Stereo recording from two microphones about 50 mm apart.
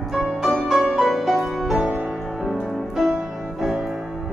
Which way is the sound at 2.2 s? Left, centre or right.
Centre.